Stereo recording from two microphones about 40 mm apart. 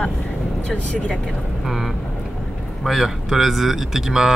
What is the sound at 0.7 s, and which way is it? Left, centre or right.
Speech, left.